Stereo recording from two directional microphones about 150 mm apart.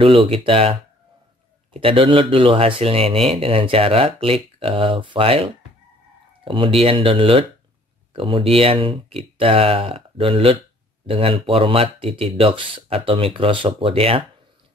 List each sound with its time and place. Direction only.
0.0 s speech: 35° right (ahead or behind)